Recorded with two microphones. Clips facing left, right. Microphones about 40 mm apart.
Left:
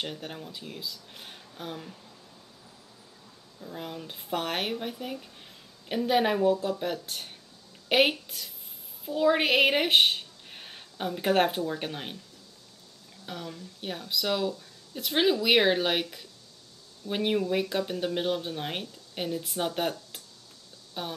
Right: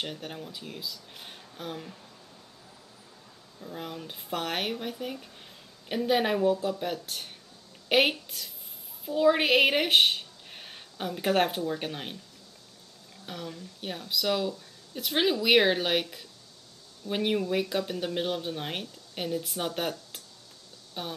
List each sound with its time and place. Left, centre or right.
0.0 s speech: centre
3.6 s speech: centre
13.2 s speech: centre